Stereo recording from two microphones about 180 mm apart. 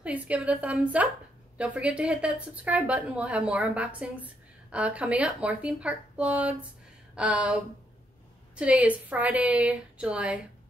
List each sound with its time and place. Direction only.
0.0 s a woman's voice: 5° right (ahead or behind)